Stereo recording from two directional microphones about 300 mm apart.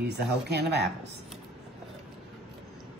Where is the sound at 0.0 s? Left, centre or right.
Right.